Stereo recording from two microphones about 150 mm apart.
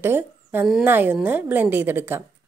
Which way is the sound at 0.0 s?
15° right (ahead or behind).